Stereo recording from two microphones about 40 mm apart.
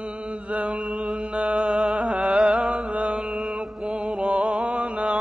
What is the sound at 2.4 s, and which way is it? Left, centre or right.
Mantra, right.